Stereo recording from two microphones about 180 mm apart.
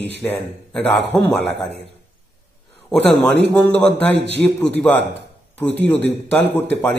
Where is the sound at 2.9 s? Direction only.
Centre (ahead or behind).